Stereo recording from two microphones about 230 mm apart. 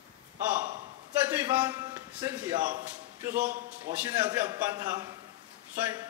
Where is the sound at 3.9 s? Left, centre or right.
Right.